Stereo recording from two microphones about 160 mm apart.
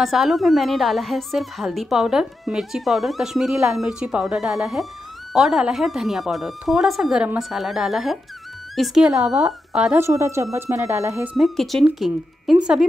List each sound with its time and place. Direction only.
0.0 s a woman's voice: centre (ahead or behind)
10.0 s speech: 15° right (ahead or behind)
11.3 s a woman's voice: centre (ahead or behind)